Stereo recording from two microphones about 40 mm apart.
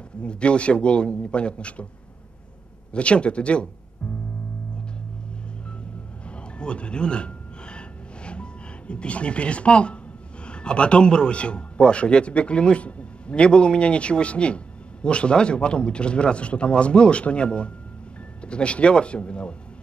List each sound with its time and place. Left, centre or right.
0.2 s a man's voice: left
2.9 s a man's voice: left
6.6 s a sound: left
8.3 s a man's voice: left